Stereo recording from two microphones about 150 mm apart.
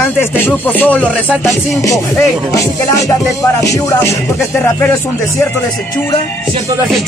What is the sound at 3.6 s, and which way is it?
Music, 20° left (ahead or behind).